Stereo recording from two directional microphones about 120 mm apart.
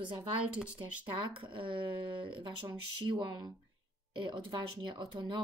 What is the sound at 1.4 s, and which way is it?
Speech, 45° right (ahead or behind).